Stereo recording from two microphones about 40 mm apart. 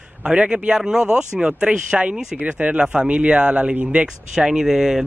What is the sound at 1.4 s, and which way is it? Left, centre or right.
Speech, right.